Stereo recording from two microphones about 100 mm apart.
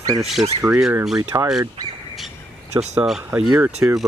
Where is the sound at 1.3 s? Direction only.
30° right (ahead or behind).